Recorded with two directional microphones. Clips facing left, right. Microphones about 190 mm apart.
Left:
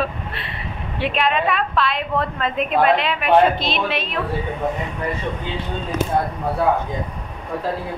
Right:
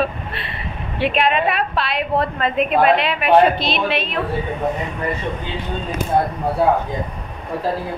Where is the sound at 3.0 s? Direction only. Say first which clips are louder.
Right 2 dB; 65° right (ahead or behind).